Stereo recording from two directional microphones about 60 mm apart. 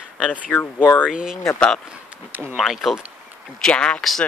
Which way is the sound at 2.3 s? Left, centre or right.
Right.